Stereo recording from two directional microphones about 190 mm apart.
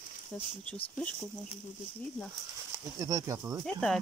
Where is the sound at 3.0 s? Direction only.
20° right (ahead or behind).